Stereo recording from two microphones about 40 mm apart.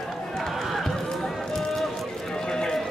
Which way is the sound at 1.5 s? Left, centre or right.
Centre.